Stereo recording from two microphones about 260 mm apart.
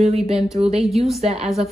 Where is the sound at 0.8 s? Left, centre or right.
Centre.